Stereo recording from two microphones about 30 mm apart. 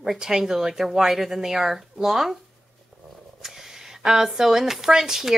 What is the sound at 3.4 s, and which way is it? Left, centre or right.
Speech, centre.